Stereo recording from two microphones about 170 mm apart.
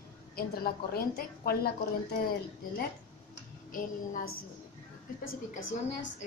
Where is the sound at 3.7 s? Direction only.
55° left (ahead or behind).